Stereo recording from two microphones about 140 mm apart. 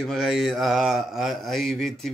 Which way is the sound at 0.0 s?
Centre (ahead or behind).